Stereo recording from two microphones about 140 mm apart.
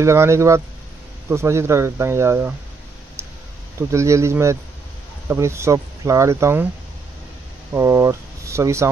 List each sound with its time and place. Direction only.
0.0 s speech: 20° right (ahead or behind)
3.2 s clicking: 20° right (ahead or behind)
3.9 s speech: 20° right (ahead or behind)
7.7 s speech: 20° right (ahead or behind)